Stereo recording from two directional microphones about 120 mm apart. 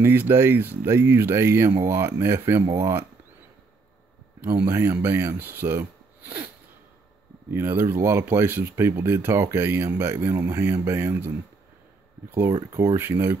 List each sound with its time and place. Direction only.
0.0 s speech: 20° right (ahead or behind)
4.4 s speech: 25° right (ahead or behind)
7.5 s speech: 20° right (ahead or behind)